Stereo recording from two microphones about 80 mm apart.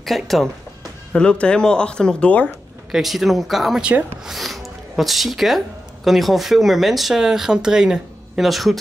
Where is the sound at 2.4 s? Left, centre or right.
Centre.